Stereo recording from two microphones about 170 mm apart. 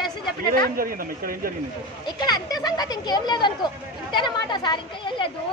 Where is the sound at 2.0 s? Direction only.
25° left (ahead or behind).